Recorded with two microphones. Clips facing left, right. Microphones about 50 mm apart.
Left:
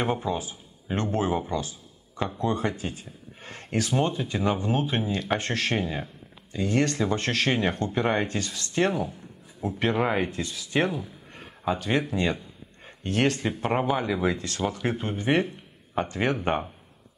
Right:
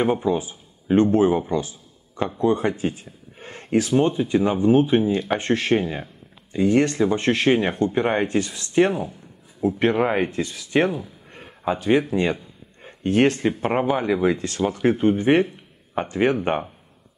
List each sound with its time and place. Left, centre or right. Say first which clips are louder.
0.0 s speech: right 6 dB; centre
3.3 s a sound: right 7 dB; centre
4.0 s speech: right 6 dB; centre; by 10.4 s right
10.4 s speech: right 5 dB; right
10.9 s a sound: right 4 dB; centre
11.6 s speech: right 6 dB; right
13.0 s speech: right 6 dB; right
13.4 s speech: right 5 dB; right
15.4 s a sound: right 2 dB; centre
16.0 s speech: right 5 dB; centre